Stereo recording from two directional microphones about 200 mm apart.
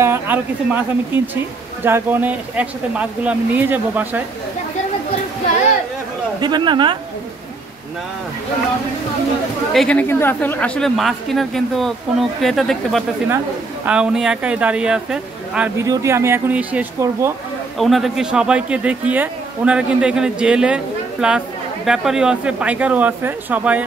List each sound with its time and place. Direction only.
0.0 s speech: 10° right (ahead or behind)
6.4 s speech: 20° right (ahead or behind)
9.7 s speech: 5° left (ahead or behind)
15.8 s speech: 15° right (ahead or behind)